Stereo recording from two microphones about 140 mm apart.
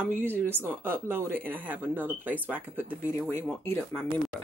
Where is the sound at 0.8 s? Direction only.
15° right (ahead or behind).